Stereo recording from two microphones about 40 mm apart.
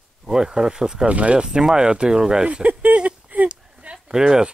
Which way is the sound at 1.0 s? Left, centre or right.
Right.